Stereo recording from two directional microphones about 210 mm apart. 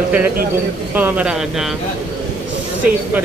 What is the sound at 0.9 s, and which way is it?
Speech, 5° right (ahead or behind).